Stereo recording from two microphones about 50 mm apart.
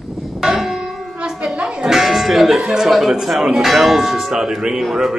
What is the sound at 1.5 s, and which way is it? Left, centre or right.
Speech, right.